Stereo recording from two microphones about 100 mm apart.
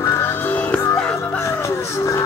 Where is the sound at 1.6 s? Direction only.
30° left (ahead or behind).